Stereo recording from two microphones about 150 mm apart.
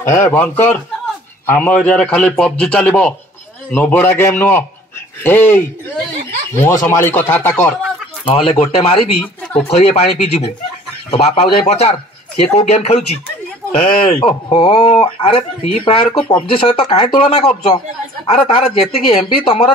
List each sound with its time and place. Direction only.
0.0 s a man's voice: 15° left (ahead or behind)
8.3 s speech: 40° left (ahead or behind)
14.9 s speech: 40° left (ahead or behind)